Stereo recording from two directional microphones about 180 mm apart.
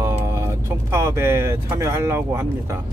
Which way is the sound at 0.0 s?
15° right (ahead or behind).